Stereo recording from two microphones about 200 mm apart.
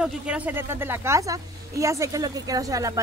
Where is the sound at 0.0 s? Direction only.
5° right (ahead or behind).